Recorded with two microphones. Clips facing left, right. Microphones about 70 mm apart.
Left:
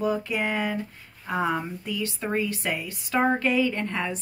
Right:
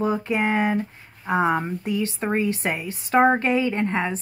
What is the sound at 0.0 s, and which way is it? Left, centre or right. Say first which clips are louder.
Speech: right 3 dB; right.